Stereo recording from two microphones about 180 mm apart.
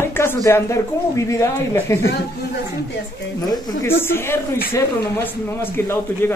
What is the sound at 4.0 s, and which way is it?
Speech, 15° left (ahead or behind).